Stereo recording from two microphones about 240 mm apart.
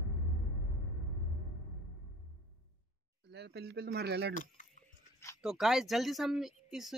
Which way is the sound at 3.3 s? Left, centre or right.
Right.